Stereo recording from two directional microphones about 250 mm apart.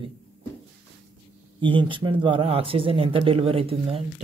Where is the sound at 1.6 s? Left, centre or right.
Centre.